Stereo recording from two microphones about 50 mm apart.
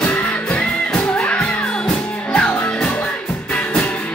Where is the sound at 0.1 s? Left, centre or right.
Left.